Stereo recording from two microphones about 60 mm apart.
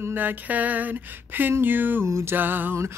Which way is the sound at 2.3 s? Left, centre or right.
Right.